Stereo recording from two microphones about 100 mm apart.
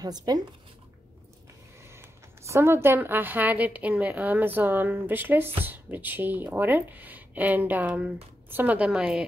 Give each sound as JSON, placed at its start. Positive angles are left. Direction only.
{"t": 0.0, "sound": "speech", "side_deg": -40}
{"t": 1.9, "sound": "a woman's voice", "side_deg": -25}